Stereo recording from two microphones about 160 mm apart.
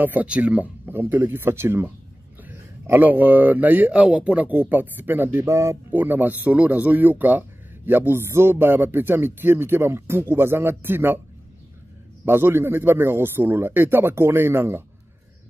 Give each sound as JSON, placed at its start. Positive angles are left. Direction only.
{"t": 0.0, "sound": "speech", "side_deg": -10}
{"t": 12.3, "sound": "speech", "side_deg": -15}